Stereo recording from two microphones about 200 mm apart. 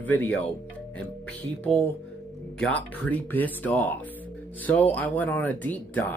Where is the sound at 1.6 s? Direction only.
10° left (ahead or behind).